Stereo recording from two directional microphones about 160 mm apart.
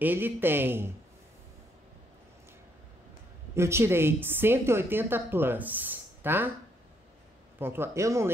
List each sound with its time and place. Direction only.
0.0 s a woman's voice: 10° right (ahead or behind)
3.5 s a woman's voice: 15° right (ahead or behind)
7.5 s a woman's voice: 15° right (ahead or behind)